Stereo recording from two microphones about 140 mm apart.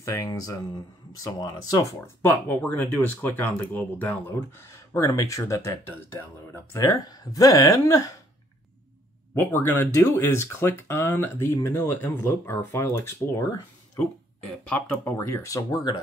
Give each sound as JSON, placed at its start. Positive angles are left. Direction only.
{"t": 0.0, "sound": "speech", "side_deg": 20}
{"t": 2.2, "sound": "speech", "side_deg": 15}
{"t": 9.3, "sound": "speech", "side_deg": 15}
{"t": 14.7, "sound": "speech", "side_deg": 20}